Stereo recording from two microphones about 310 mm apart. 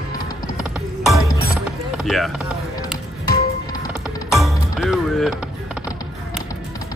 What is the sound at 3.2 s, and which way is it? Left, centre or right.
Music, centre.